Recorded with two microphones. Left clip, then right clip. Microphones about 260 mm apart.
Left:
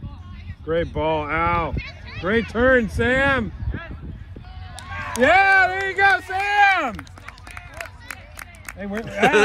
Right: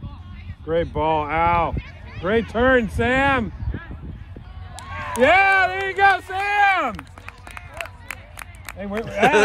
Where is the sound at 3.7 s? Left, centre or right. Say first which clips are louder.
Left 2 dB; centre.